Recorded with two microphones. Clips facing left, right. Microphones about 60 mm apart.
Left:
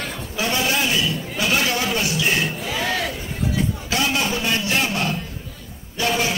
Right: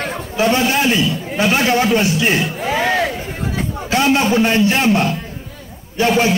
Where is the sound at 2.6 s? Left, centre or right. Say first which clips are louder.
Right 7 dB; right.